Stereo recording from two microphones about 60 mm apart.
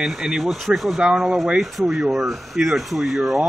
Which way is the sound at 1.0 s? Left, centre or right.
Centre.